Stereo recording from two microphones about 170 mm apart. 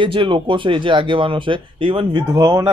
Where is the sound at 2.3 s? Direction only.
20° right (ahead or behind).